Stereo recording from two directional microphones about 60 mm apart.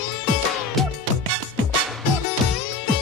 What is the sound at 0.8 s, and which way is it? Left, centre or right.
Music, centre.